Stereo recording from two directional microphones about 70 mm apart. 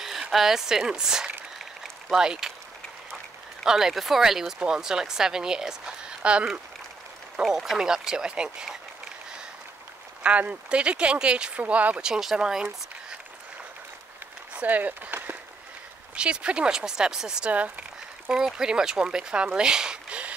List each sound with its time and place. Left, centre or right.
0.0 s a woman's voice: centre
1.6 s a sound: centre
3.6 s a woman's voice: centre
10.2 s a woman's voice: centre
12.1 s a woman's voice: centre
14.5 s speech: right
16.2 s speech: centre
18.3 s speech: centre